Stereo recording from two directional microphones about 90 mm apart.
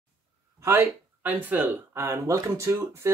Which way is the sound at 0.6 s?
30° right (ahead or behind).